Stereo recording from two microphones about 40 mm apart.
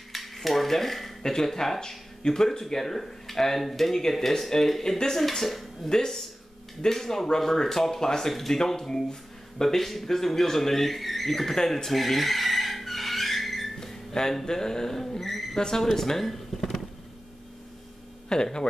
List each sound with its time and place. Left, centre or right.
0.1 s cutlery: centre
1.3 s speech: centre
5.3 s speech: centre
13.7 s a sound: centre
15.5 s speech: centre
18.3 s speech: centre